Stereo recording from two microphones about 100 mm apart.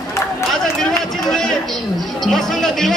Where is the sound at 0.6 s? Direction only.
5° left (ahead or behind).